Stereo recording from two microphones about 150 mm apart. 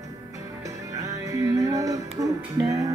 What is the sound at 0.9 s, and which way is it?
Music, 20° right (ahead or behind).